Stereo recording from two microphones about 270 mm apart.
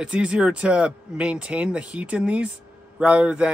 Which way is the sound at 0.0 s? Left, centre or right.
Centre.